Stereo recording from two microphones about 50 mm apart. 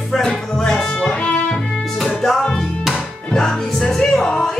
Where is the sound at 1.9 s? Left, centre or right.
Centre.